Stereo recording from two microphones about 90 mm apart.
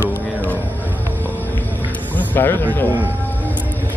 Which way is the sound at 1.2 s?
20° left (ahead or behind).